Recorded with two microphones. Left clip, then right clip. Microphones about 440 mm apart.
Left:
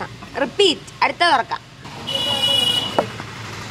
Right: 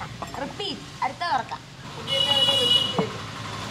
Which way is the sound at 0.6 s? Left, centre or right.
Left.